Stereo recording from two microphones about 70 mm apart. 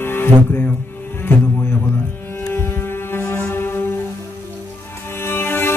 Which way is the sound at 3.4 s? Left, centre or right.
Left.